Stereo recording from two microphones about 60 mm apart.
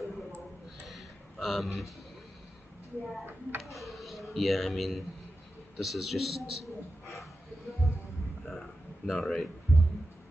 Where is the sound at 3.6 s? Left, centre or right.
Centre.